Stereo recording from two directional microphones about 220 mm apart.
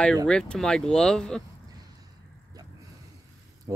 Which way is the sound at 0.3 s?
5° left (ahead or behind).